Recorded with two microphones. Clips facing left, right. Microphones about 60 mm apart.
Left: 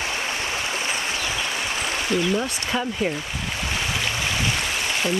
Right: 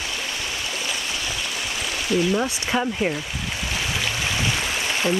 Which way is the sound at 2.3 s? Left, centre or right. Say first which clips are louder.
Right 2 dB; centre.